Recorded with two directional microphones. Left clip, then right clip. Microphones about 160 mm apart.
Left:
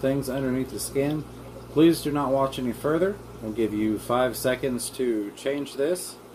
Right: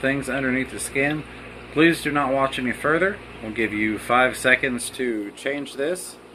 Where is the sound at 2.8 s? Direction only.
5° right (ahead or behind).